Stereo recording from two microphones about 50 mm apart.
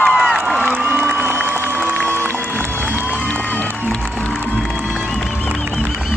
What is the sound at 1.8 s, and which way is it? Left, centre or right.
Music, right.